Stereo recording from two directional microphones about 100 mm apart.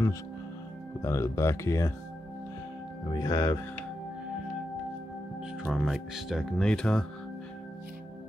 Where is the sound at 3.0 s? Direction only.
45° left (ahead or behind).